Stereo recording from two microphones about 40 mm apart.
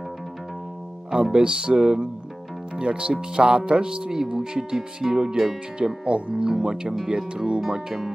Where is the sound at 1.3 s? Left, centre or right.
Right.